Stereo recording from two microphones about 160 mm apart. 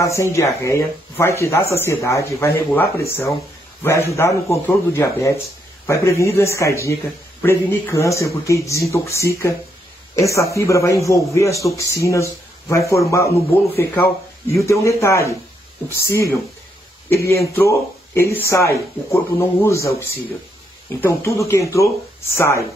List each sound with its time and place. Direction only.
0.0 s speech: 20° left (ahead or behind)
21.0 s speech: 15° left (ahead or behind)